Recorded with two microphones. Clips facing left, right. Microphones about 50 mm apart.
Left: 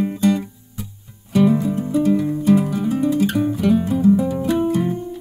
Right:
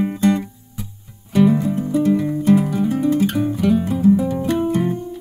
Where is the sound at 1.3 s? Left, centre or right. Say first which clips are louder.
Right 1 dB; centre.